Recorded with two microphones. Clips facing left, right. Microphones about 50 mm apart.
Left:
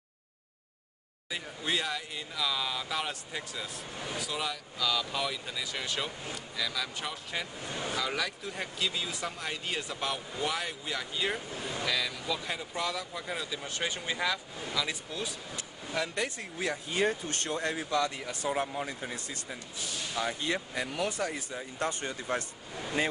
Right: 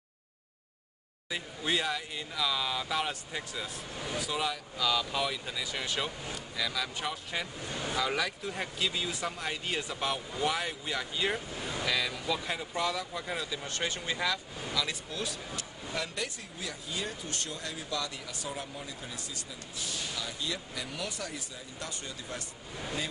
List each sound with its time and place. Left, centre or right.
1.3 s speech: centre
7.6 s speech: left
7.9 s speech: centre
16.5 s speech: left